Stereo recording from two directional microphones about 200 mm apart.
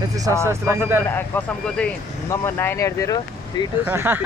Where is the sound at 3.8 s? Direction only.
10° right (ahead or behind).